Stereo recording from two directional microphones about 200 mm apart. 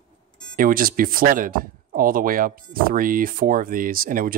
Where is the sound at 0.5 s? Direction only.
45° right (ahead or behind).